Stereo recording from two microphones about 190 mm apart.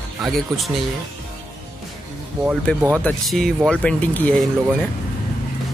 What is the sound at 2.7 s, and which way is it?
Speech, 5° left (ahead or behind).